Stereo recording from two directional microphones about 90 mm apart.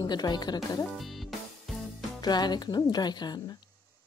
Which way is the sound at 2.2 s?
50° left (ahead or behind).